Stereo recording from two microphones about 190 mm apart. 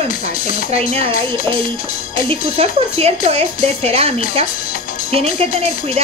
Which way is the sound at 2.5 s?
35° right (ahead or behind).